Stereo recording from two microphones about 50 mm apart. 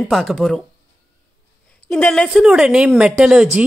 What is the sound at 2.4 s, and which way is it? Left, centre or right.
A woman's voice, centre.